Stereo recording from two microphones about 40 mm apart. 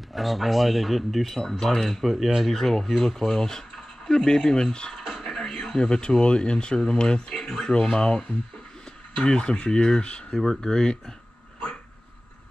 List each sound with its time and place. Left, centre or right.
0.1 s speech: centre
1.4 s speech: centre
5.0 s music: centre
5.8 s speech: left
10.3 s speech: centre